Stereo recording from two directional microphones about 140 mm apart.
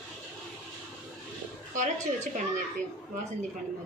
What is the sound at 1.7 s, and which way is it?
Speech, 60° right (ahead or behind).